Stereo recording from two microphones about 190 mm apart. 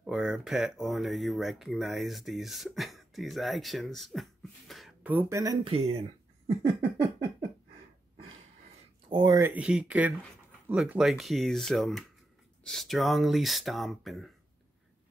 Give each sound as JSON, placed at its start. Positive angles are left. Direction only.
{"t": 0.0, "sound": "speech", "side_deg": -5}
{"t": 6.6, "sound": "a sound", "side_deg": -60}
{"t": 9.1, "sound": "speech", "side_deg": -20}